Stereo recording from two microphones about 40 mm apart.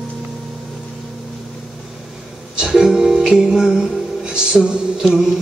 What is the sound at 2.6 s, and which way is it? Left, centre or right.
Music, centre.